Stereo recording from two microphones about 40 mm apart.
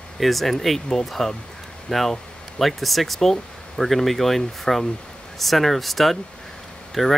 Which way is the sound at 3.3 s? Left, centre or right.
Centre.